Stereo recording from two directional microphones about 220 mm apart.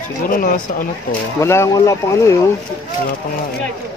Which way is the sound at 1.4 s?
15° left (ahead or behind).